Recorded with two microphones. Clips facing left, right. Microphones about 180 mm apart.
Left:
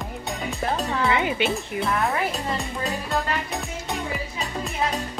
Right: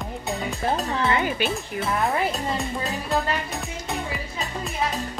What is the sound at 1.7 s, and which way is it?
Speech, 20° left (ahead or behind).